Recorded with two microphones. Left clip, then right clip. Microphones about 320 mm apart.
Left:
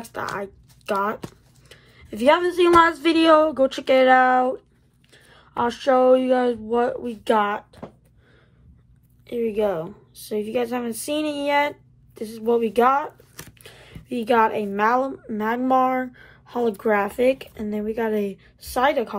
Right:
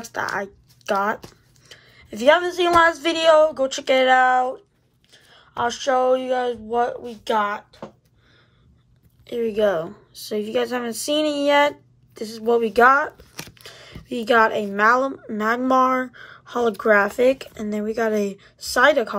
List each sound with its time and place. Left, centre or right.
0.0 s a woman's voice: centre
5.8 s a woman's voice: centre
9.2 s a woman's voice: centre